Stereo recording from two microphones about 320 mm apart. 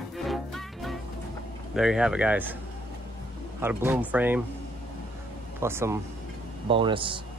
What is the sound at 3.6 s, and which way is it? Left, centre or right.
Speech, centre.